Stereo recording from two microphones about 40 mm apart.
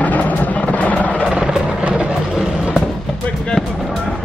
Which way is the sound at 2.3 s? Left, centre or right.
Centre.